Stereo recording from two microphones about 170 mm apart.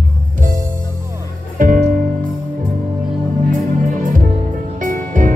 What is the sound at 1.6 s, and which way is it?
Music, 50° right (ahead or behind).